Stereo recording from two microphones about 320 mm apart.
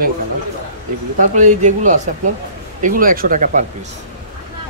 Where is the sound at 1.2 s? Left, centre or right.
Right.